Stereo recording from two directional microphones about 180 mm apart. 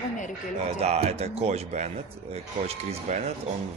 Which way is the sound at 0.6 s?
35° right (ahead or behind).